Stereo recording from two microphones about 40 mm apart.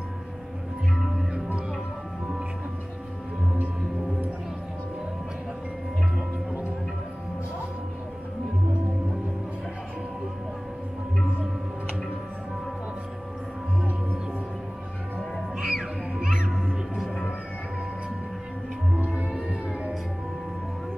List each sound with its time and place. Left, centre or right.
0.9 s music: centre
15.3 s music: centre
16.6 s music: centre
19.0 s music: right